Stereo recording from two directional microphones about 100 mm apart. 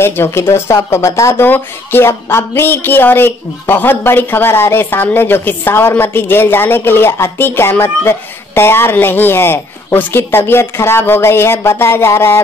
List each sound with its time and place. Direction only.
0.0 s speech: 25° left (ahead or behind)